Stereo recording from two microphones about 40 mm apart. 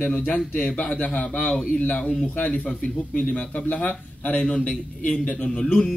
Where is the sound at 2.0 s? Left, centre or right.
Centre.